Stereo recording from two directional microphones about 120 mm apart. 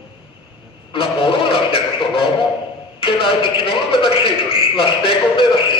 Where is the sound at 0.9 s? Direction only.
50° left (ahead or behind).